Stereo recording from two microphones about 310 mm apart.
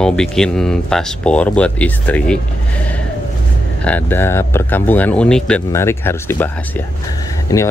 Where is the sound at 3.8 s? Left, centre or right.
Centre.